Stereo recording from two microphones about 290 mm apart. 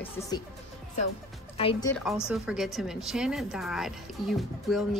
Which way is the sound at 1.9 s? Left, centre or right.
Centre.